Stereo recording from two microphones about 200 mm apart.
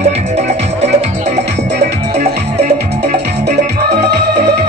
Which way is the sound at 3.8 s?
60° right (ahead or behind).